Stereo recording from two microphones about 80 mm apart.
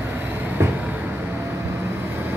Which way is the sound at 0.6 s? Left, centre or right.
Right.